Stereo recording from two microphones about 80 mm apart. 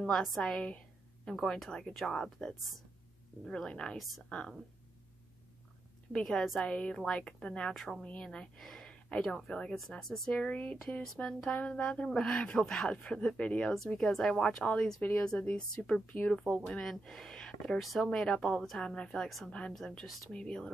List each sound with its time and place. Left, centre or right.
0.0 s speech: centre
0.4 s a sound: centre
1.4 s speech: centre
6.1 s speech: centre
8.0 s speech: centre
10.3 s speech: centre
18.0 s speech: centre